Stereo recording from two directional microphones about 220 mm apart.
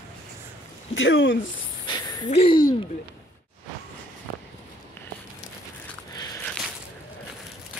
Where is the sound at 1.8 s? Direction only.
20° left (ahead or behind).